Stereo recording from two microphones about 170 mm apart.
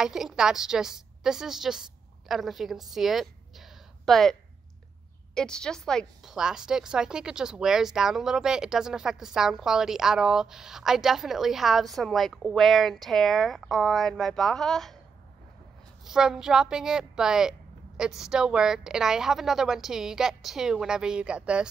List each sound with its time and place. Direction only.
0.0 s a woman's voice: 5° right (ahead or behind)
2.9 s a sound: centre (ahead or behind)
5.3 s a woman's voice: 5° left (ahead or behind)
16.0 s a woman's voice: 5° right (ahead or behind)